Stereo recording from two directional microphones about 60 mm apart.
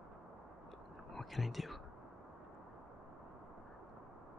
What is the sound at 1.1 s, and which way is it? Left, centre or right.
Speech, centre.